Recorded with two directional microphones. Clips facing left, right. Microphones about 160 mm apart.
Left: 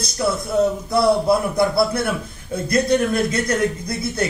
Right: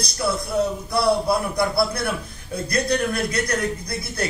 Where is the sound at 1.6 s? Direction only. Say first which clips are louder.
Left 4 dB; 25° left (ahead or behind).